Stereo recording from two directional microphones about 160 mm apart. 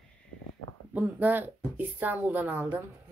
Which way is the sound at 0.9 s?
10° right (ahead or behind).